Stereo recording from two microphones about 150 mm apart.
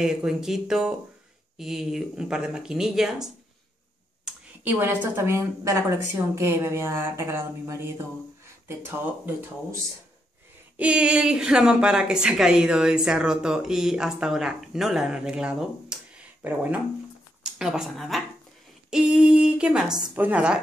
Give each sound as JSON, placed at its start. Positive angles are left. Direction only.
{"t": 0.0, "sound": "a woman's voice", "side_deg": -5}
{"t": 4.2, "sound": "a sound", "side_deg": -15}
{"t": 5.0, "sound": "a woman's voice", "side_deg": -15}
{"t": 10.8, "sound": "a woman's voice", "side_deg": -5}